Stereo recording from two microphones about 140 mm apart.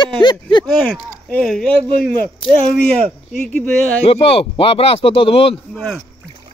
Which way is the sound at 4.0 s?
45° left (ahead or behind).